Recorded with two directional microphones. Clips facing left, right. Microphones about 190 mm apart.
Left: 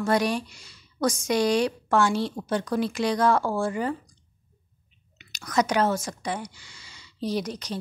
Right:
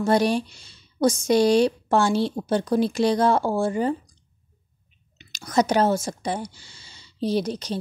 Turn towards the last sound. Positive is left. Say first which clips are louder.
# right 4 dB
turn(degrees=-30)  # may be behind; listen again after turning